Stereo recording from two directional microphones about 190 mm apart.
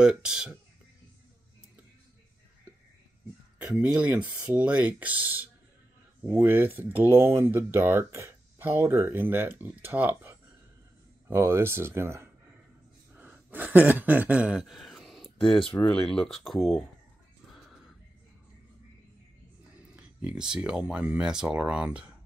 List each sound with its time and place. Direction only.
0.0 s speech: 5° right (ahead or behind)
3.5 s speech: 5° right (ahead or behind)
13.1 s a sound: 10° right (ahead or behind)
15.3 s a sound: 30° left (ahead or behind)
15.6 s speech: 5° left (ahead or behind)
19.9 s speech: 5° right (ahead or behind)